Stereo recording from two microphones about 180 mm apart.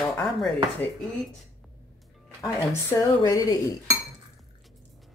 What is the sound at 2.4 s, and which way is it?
Speech, 15° left (ahead or behind).